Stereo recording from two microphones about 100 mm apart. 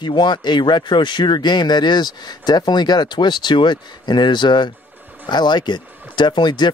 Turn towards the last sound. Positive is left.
turn(degrees=50)  # may be behind; listen again after turning